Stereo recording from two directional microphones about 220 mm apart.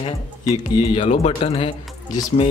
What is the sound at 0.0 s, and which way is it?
Speech, 25° left (ahead or behind).